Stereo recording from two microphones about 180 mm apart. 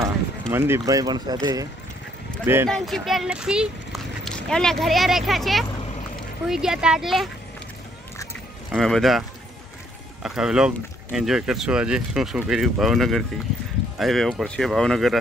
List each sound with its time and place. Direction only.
0.5 s speech: 15° right (ahead or behind)
2.7 s speech: centre (ahead or behind)
8.7 s speech: centre (ahead or behind)
10.2 s speech: 5° right (ahead or behind)